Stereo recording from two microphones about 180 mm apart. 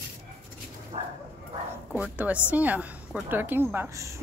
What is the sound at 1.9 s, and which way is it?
A woman's voice, 10° right (ahead or behind).